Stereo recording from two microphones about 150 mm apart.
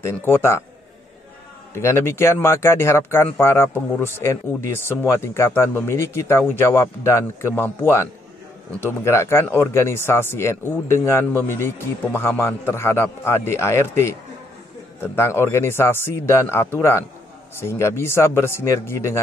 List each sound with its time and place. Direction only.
0.0 s speech: 15° left (ahead or behind)
1.7 s speech: 15° left (ahead or behind)
8.8 s speech: 20° left (ahead or behind)